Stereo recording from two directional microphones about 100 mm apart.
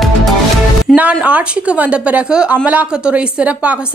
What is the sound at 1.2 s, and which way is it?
Speech, 10° right (ahead or behind).